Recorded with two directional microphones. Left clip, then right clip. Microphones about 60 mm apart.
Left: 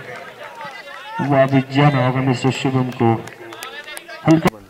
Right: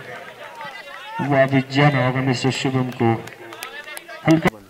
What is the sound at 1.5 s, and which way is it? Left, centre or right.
A man's voice, right.